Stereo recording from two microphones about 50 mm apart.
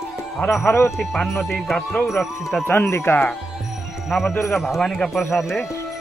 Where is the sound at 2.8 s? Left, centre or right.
Left.